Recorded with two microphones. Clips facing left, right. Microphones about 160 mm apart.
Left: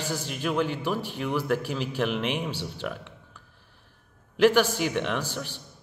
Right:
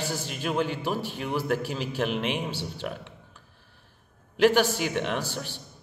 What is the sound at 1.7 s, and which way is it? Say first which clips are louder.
Speech: left 1 dB; 45° right (ahead or behind).